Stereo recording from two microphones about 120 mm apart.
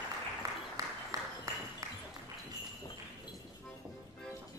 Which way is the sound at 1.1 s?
25° right (ahead or behind).